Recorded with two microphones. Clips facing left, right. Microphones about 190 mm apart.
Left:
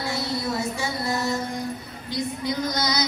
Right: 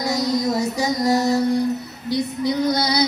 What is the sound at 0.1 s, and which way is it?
Music, 40° right (ahead or behind).